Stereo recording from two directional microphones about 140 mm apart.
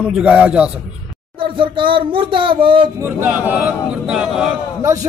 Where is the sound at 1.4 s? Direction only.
35° right (ahead or behind).